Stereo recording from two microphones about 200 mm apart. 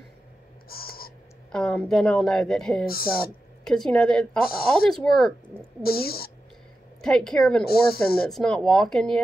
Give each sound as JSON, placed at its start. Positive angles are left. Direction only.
{"t": 0.7, "sound": "whispering", "side_deg": 50}
{"t": 1.5, "sound": "a woman's voice", "side_deg": 5}
{"t": 2.9, "sound": "speech", "side_deg": 50}
{"t": 3.6, "sound": "a woman's voice", "side_deg": 5}
{"t": 5.8, "sound": "speech", "side_deg": 50}
{"t": 7.0, "sound": "a woman's voice", "side_deg": 5}
{"t": 7.6, "sound": "speech", "side_deg": 50}
{"t": 8.3, "sound": "a woman's voice", "side_deg": 5}